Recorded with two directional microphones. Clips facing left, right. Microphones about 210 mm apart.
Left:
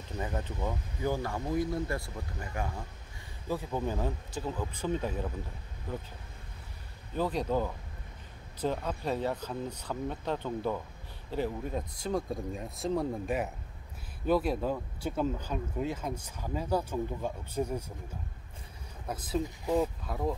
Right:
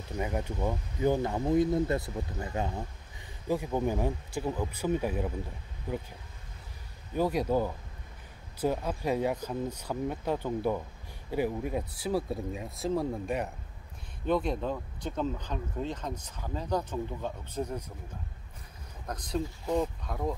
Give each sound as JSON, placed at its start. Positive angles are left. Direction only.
{"t": 0.2, "sound": "speech", "side_deg": -15}
{"t": 7.2, "sound": "speech", "side_deg": -10}
{"t": 19.0, "sound": "speech", "side_deg": 5}